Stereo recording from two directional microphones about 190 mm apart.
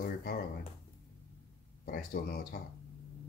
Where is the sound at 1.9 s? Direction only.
50° left (ahead or behind).